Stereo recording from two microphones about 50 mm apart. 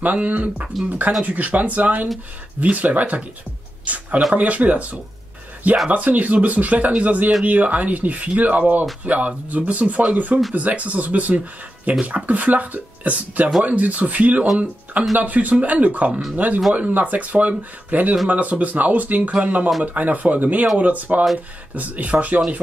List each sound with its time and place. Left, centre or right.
0.0 s speech: right
5.9 s speech: right